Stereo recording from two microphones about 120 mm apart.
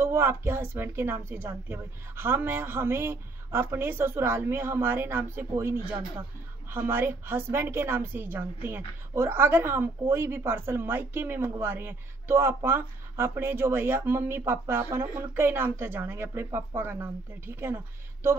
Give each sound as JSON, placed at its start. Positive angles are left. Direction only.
{"t": 0.0, "sound": "a woman's voice", "side_deg": -20}